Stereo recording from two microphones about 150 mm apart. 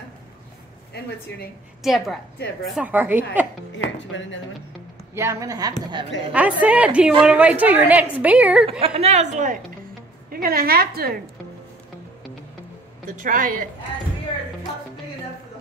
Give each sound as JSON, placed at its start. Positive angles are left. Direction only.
{"t": 1.8, "sound": "a woman's voice", "side_deg": 0}
{"t": 5.1, "sound": "a woman's voice", "side_deg": -20}
{"t": 6.3, "sound": "a woman's voice", "side_deg": -10}
{"t": 8.6, "sound": "a woman's voice", "side_deg": -40}
{"t": 10.3, "sound": "a woman's voice", "side_deg": -85}
{"t": 13.0, "sound": "a woman's voice", "side_deg": -65}